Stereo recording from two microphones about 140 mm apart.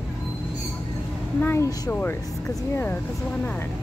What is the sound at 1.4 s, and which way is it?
Speech, 20° left (ahead or behind).